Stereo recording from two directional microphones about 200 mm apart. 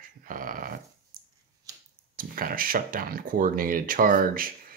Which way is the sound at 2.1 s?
45° right (ahead or behind).